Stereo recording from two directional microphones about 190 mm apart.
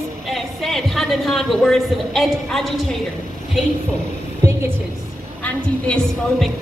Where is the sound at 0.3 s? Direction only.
Centre (ahead or behind).